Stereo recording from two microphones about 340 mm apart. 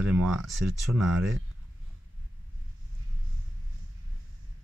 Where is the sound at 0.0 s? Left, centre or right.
Centre.